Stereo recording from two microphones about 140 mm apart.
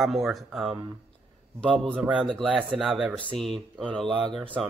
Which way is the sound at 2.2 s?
5° left (ahead or behind).